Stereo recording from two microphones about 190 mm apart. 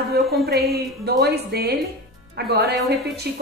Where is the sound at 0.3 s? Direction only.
55° right (ahead or behind).